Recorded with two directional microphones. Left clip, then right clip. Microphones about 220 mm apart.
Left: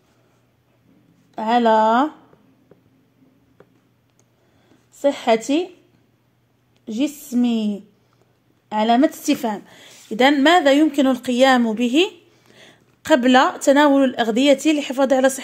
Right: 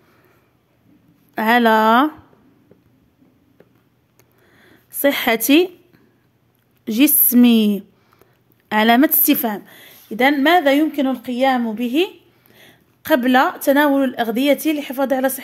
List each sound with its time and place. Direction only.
1.3 s speech: 30° right (ahead or behind)
5.0 s a woman's voice: 30° right (ahead or behind)
6.8 s speech: 35° right (ahead or behind); by 15.4 s 10° left (ahead or behind)